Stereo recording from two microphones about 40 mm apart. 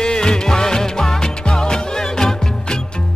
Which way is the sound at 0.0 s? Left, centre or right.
Centre.